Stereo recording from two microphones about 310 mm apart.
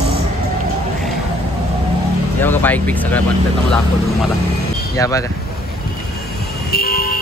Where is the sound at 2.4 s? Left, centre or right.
Centre.